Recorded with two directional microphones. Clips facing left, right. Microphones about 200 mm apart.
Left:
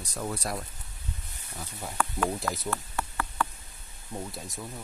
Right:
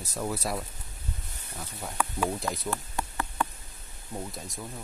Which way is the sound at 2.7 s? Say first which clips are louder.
Even; 15° right (ahead or behind).